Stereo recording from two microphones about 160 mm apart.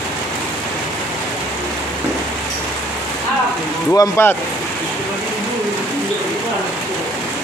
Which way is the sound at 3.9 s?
15° left (ahead or behind).